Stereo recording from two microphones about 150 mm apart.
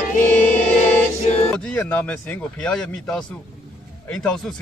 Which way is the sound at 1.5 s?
10° left (ahead or behind).